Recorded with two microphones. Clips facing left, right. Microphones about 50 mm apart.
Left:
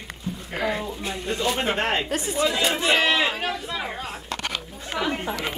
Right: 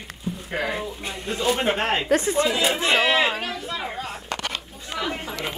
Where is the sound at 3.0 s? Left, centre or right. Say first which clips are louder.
Right 1 dB; centre.